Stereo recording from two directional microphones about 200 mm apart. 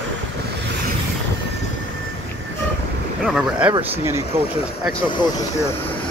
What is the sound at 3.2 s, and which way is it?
Speech, 5° right (ahead or behind).